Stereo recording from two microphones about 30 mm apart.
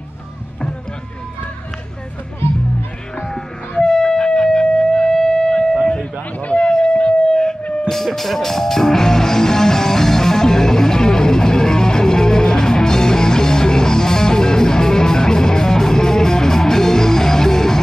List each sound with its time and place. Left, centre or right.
3.2 s music: centre
3.8 s a sound: centre; by 7.4 s left
7.9 s music: centre